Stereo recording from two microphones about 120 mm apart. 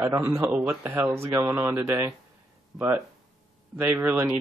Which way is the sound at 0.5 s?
10° right (ahead or behind).